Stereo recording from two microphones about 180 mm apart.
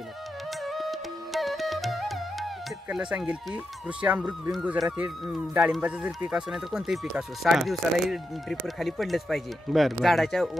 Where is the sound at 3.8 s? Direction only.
5° right (ahead or behind).